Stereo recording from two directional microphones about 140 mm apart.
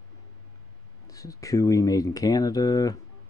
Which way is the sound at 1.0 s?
25° left (ahead or behind).